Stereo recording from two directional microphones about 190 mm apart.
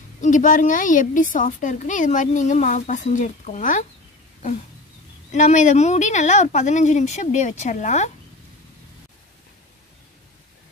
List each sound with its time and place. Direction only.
0.2 s a woman's voice: 40° left (ahead or behind)
5.3 s a woman's voice: 40° left (ahead or behind)